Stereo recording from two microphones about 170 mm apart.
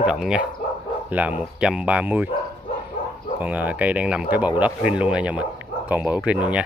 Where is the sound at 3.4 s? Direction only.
10° right (ahead or behind).